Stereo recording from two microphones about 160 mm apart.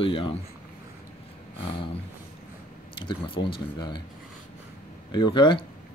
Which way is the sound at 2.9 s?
30° left (ahead or behind).